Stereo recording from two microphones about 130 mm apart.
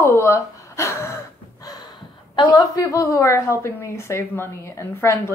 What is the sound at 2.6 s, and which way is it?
A woman's voice, 25° left (ahead or behind).